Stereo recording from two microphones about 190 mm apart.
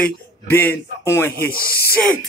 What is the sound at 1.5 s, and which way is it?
Speech, 50° left (ahead or behind).